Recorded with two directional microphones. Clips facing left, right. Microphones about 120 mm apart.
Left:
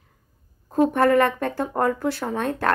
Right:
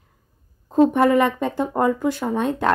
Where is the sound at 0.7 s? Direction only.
15° right (ahead or behind).